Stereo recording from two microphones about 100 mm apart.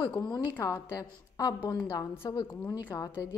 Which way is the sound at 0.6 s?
35° left (ahead or behind).